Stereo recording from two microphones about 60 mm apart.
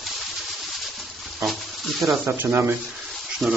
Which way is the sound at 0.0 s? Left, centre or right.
Centre.